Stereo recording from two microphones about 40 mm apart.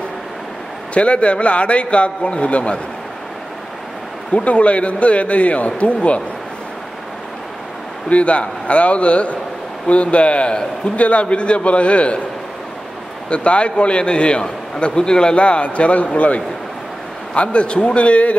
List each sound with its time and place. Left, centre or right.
0.9 s a man's voice: left
4.3 s a man's voice: left
8.1 s a man's voice: left
13.3 s a man's voice: left